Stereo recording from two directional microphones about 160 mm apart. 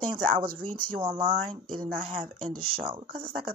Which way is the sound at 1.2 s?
30° right (ahead or behind).